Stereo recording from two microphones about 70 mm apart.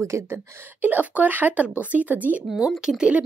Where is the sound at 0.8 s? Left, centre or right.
Right.